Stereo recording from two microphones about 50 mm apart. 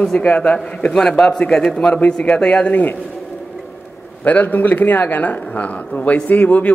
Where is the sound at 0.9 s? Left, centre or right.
Centre.